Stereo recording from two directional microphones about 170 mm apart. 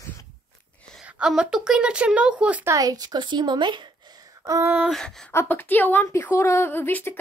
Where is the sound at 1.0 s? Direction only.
5° right (ahead or behind).